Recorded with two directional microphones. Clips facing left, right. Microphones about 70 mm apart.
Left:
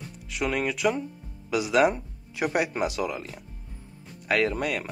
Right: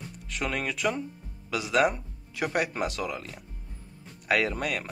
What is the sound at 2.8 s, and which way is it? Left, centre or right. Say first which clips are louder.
Speech: left 3 dB; centre.